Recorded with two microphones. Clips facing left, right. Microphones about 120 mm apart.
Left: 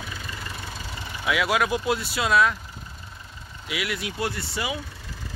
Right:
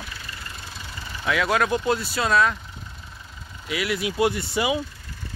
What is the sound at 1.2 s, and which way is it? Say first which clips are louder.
Speech: right 1 dB; 10° left (ahead or behind).